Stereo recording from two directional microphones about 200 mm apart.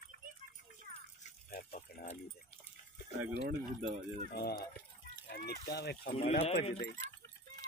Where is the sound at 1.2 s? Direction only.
40° left (ahead or behind).